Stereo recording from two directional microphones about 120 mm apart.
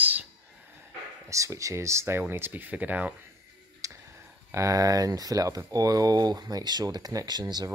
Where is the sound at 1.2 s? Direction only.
25° right (ahead or behind).